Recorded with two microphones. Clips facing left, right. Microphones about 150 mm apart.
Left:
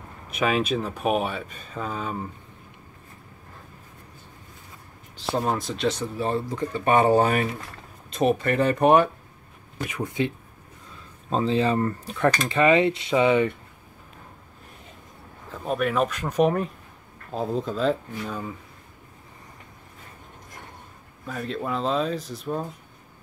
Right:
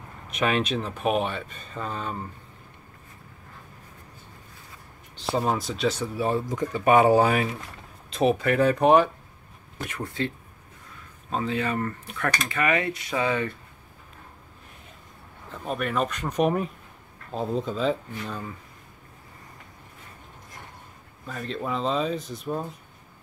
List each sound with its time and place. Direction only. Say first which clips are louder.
0.3 s speech: left 1 dB; 5° left (ahead or behind)
5.3 s speech: even; centre (ahead or behind); by 10.3 s 15° left (ahead or behind)
11.2 s speech: left 5 dB; 30° left (ahead or behind)
15.5 s speech: left 3 dB; centre (ahead or behind)
21.3 s speech: left 1 dB; 5° left (ahead or behind)